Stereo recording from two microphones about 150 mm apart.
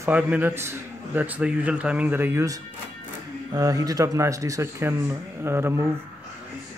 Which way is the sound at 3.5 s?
25° right (ahead or behind).